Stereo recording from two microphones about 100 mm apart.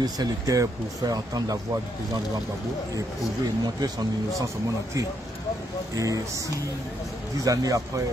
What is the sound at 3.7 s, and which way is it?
Speech, 40° right (ahead or behind).